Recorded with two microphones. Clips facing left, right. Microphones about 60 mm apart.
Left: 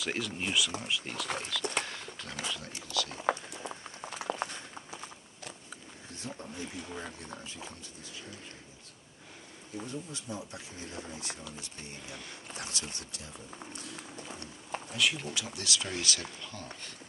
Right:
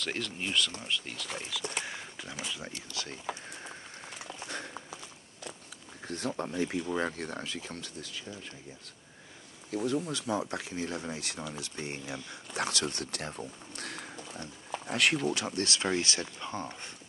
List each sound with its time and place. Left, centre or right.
0.0 s speech: centre
1.9 s a sound: centre
3.3 s patter: left
4.2 s a sound: left
6.0 s speech: right
9.7 s speech: right